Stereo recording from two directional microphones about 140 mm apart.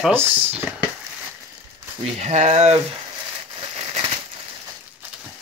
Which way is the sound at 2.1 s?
55° right (ahead or behind).